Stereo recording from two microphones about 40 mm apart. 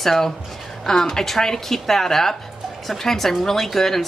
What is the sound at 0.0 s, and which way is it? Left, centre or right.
A woman's voice, centre.